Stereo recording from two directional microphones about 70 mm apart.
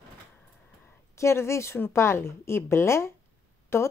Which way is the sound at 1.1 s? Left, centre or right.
Left.